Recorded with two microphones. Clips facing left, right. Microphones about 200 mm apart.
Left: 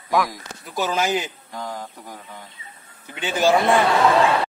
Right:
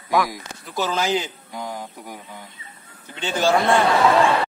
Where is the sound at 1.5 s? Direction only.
15° right (ahead or behind).